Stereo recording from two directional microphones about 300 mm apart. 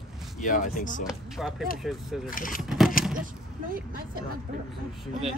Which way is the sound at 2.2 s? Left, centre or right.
Left.